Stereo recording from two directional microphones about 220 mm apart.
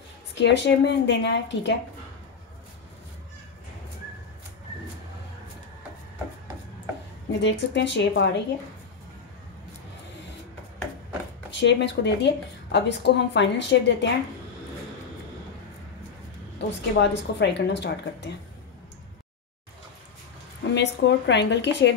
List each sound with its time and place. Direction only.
0.4 s a woman's voice: 50° left (ahead or behind)
7.3 s a woman's voice: 50° left (ahead or behind)
11.6 s a woman's voice: 50° left (ahead or behind)
16.5 s a woman's voice: 50° left (ahead or behind)
20.6 s a woman's voice: 50° left (ahead or behind)